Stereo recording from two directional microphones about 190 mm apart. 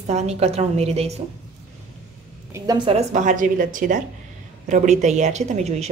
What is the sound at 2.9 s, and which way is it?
A woman's voice, 35° right (ahead or behind).